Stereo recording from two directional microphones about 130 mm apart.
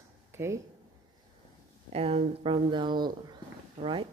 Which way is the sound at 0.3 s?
20° right (ahead or behind).